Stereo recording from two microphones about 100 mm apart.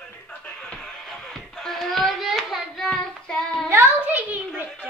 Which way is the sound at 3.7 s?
20° right (ahead or behind).